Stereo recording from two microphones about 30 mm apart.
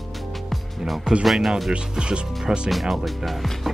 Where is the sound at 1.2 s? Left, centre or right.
Centre.